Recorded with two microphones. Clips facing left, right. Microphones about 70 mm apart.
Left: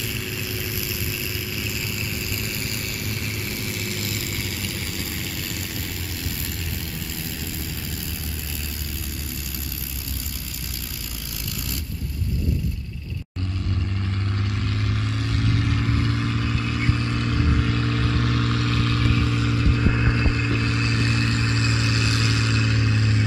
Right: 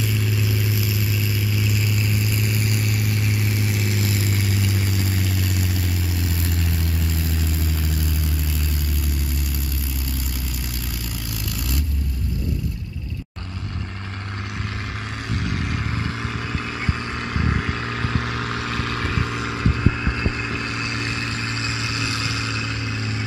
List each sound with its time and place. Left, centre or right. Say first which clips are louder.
14.5 s vehicle: left 2 dB; centre
19.9 s vehicle: left 2 dB; centre
20.2 s vehicle: left 2 dB; centre